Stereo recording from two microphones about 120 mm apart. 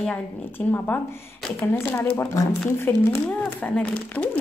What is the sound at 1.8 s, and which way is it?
Speech, 15° left (ahead or behind).